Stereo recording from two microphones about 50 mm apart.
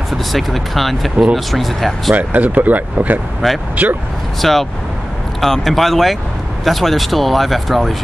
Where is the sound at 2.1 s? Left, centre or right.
Right.